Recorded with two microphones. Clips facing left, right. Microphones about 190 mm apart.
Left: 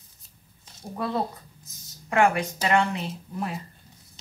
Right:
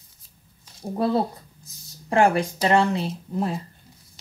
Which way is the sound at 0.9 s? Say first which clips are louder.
Right 6 dB; 35° right (ahead or behind).